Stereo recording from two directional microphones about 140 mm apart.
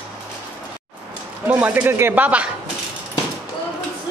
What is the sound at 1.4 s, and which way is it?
Speech, 15° right (ahead or behind).